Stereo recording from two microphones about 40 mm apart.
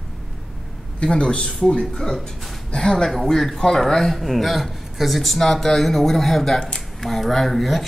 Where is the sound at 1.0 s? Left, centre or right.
Left.